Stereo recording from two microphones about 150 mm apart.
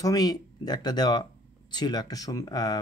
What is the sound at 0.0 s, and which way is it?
Speech, 25° left (ahead or behind).